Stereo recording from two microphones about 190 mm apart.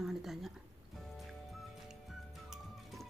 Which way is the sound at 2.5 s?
Centre (ahead or behind).